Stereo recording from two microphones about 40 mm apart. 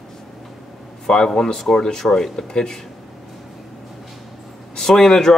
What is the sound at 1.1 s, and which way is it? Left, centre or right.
Speech, centre.